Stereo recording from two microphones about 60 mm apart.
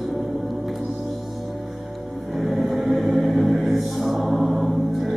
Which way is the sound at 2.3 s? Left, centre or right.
Centre.